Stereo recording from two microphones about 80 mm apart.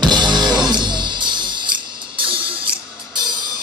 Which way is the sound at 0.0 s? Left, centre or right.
Right.